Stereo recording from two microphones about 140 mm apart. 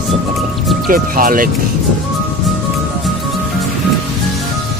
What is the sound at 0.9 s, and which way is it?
Speech, 90° right.